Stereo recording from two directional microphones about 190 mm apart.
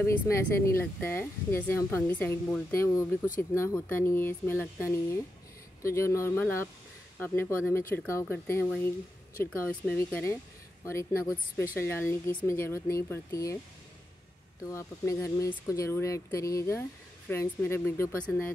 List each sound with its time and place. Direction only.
0.0 s speech: 15° left (ahead or behind)
14.7 s speech: 15° left (ahead or behind)